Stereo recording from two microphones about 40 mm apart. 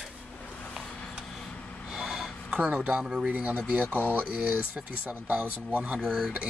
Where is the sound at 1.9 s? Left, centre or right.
Centre.